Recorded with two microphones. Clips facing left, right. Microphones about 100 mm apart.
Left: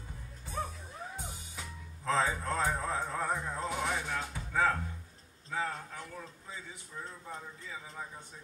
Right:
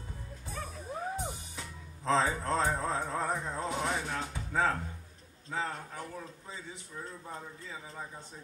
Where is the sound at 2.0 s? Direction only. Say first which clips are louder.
Right 2 dB; 20° right (ahead or behind).